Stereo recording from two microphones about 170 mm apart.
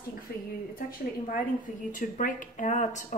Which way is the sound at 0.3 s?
65° left (ahead or behind).